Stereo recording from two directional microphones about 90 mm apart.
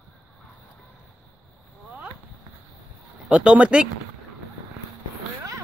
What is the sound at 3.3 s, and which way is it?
Speech, 10° right (ahead or behind).